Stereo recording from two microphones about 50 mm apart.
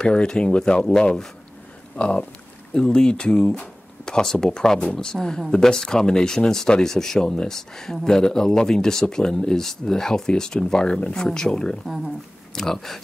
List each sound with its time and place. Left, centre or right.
0.0 s speech: centre